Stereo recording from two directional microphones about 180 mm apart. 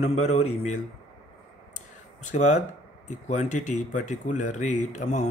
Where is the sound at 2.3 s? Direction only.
40° left (ahead or behind).